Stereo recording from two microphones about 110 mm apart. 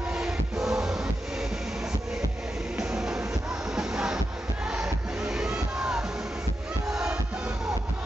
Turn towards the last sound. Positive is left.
turn(degrees=-5)  # may be behind; listen again after turning